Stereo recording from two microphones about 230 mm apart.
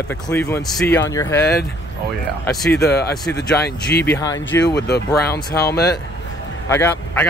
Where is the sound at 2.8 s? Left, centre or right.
Left.